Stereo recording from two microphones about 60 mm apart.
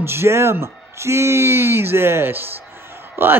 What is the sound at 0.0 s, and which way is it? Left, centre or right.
A man's voice, right.